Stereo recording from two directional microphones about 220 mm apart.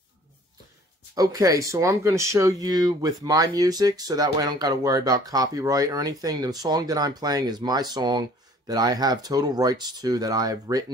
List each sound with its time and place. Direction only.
1.1 s speech: 15° right (ahead or behind)